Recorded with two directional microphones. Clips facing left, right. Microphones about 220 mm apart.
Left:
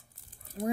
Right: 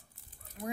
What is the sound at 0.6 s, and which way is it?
Fowl, 35° left (ahead or behind).